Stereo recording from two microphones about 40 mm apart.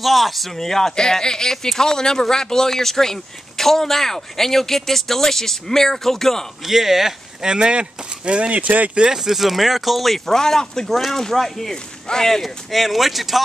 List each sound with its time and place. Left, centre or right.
0.0 s speech: centre
6.7 s speech: centre
7.5 s speech: right
8.9 s speech: centre